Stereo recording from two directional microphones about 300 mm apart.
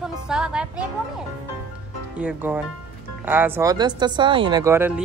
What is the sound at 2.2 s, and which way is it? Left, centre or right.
Speech, centre.